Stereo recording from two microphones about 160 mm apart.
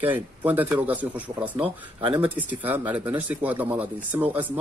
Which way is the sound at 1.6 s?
30° right (ahead or behind).